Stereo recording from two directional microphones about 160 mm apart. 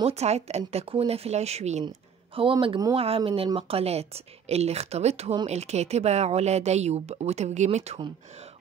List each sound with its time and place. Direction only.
0.0 s a woman's voice: 40° right (ahead or behind)